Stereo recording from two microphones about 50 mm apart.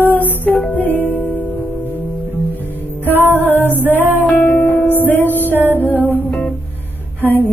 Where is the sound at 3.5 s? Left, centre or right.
Left.